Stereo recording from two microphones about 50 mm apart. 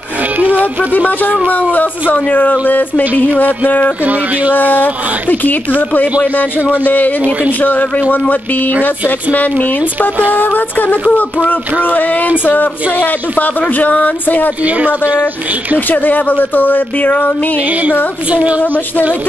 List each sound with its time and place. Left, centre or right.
0.4 s music: right
0.9 s speech: left
4.0 s speech: right
4.6 s speech: left
6.6 s speech: right
6.9 s speech: left
14.6 s speech: right
15.9 s speech: left
18.3 s a woman's voice: right